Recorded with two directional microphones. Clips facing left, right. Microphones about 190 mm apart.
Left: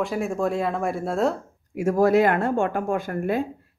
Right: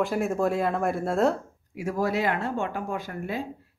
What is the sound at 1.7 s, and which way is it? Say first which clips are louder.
Speech: left 8 dB; 45° left (ahead or behind).